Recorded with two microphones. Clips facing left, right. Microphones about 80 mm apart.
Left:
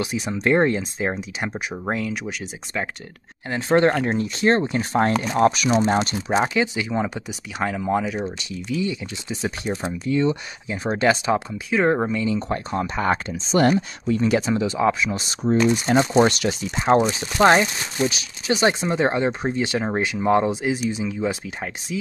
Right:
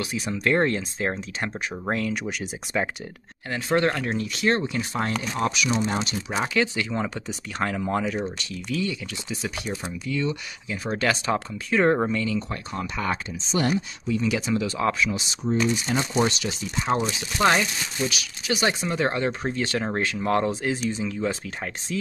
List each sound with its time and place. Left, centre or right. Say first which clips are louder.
0.0 s speech: left 3 dB; left; by 2.9 s centre
3.4 s speech: left 5 dB; left
6.2 s speech: left 7 dB; left
6.5 s speech: left 2 dB; centre
8.5 s speech: left 3 dB; centre
12.4 s speech: left 5 dB; left
13.3 s speech: left 7 dB; left
14.8 s speech: left 4 dB; centre
15.1 s speech: left 5 dB; left
17.1 s speech: left 5 dB; left; by 21.4 s centre